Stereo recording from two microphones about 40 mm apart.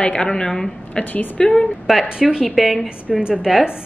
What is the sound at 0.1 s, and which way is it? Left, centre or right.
A woman's voice, left.